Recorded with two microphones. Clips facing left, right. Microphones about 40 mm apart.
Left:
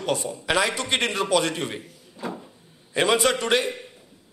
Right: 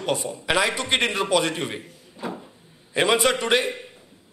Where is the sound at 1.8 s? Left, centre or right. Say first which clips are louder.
Right 1 dB; centre.